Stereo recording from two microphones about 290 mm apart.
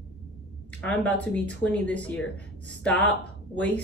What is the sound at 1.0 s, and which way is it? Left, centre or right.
Speech, centre.